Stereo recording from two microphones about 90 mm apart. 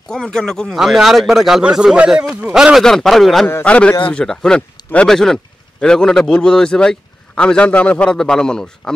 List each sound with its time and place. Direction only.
0.1 s speech: 10° left (ahead or behind)
3.4 s speech: 20° left (ahead or behind)